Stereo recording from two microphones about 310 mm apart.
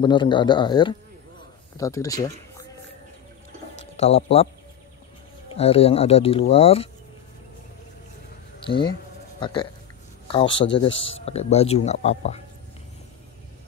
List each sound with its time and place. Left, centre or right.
0.0 s speech: centre
3.9 s speech: centre
5.5 s speech: centre
8.6 s speech: centre